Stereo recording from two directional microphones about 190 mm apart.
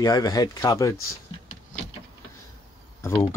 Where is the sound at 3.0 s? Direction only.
15° left (ahead or behind).